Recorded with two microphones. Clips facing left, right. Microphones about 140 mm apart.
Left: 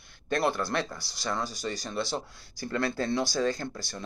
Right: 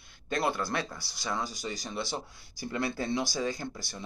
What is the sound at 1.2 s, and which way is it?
Speech, 15° right (ahead or behind).